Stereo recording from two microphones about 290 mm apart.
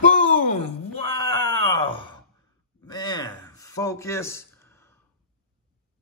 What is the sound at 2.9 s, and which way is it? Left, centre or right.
Speech, centre.